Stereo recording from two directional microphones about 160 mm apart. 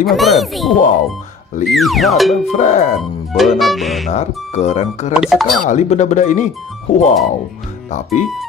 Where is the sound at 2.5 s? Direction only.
50° left (ahead or behind).